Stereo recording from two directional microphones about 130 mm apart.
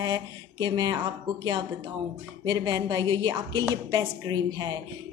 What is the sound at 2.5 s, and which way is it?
A woman's voice, 30° right (ahead or behind).